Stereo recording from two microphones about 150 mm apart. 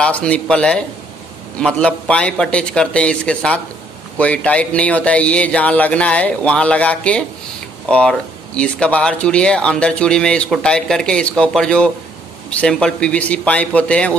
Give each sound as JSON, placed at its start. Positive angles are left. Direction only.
{"t": 0.0, "sound": "speech", "side_deg": 5}